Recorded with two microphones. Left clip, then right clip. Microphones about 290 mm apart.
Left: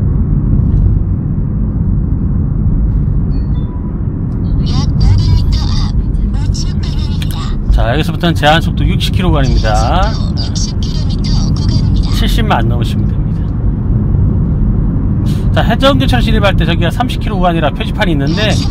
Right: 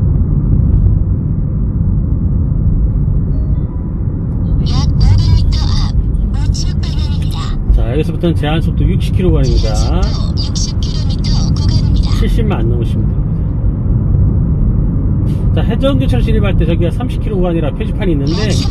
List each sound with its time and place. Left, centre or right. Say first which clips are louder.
7.9 s speech: even; left
15.5 s speech: left 6 dB; left
18.2 s speech: left 3 dB; centre